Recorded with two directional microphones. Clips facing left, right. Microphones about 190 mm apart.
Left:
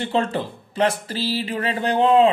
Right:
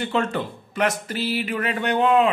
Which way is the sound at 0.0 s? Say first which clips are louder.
Left 1 dB; 30° left (ahead or behind).